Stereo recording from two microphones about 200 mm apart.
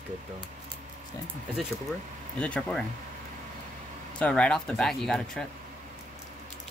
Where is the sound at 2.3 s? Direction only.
5° left (ahead or behind).